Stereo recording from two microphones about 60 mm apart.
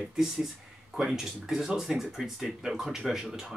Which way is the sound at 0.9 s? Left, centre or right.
Centre.